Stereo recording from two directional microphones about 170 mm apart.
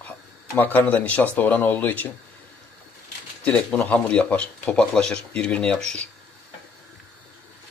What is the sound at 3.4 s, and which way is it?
Speech, 5° left (ahead or behind).